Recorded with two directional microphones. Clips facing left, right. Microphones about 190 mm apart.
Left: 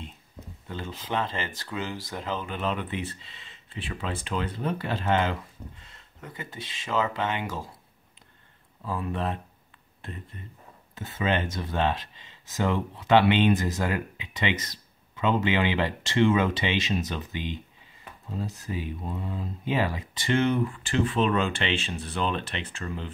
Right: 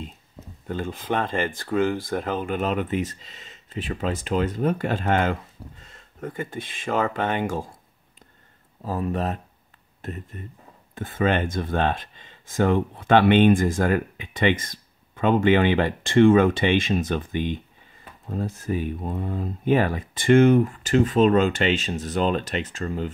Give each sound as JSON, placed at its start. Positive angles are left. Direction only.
{"t": 0.7, "sound": "speech", "side_deg": -50}
{"t": 8.8, "sound": "speech", "side_deg": -40}